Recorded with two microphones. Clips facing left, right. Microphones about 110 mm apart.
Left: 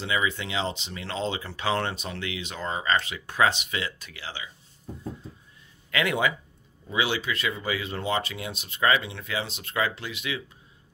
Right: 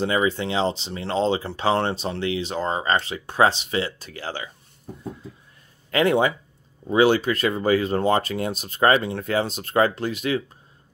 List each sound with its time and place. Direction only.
0.0 s speech: 35° right (ahead or behind)
5.9 s speech: 35° right (ahead or behind)